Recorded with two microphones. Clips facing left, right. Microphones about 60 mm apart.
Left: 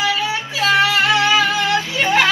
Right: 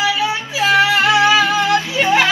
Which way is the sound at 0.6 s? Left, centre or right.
Centre.